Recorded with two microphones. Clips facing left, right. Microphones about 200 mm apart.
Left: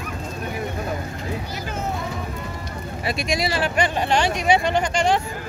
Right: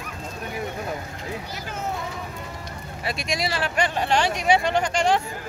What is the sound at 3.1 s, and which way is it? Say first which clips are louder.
Speech: left 3 dB; 5° left (ahead or behind).